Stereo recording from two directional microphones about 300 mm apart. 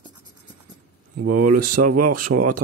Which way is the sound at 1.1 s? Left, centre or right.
Right.